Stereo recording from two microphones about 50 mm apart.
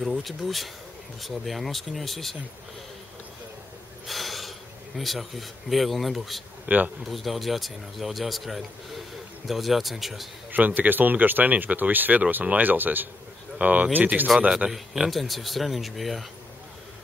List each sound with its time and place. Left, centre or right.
0.0 s speech: centre
4.1 s speech: centre
6.6 s speech: right
7.1 s speech: centre
10.5 s speech: right
14.7 s speech: centre